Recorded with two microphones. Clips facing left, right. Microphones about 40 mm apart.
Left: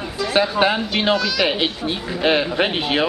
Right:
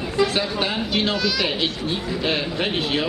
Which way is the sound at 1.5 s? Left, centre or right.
Left.